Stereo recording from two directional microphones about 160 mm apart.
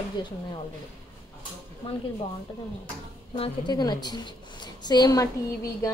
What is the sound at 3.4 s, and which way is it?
A woman's voice, 25° left (ahead or behind).